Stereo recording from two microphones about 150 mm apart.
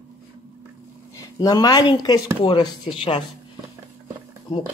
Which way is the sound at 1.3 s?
25° left (ahead or behind).